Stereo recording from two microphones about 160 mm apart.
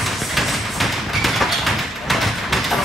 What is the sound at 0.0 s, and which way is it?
Tap, centre (ahead or behind).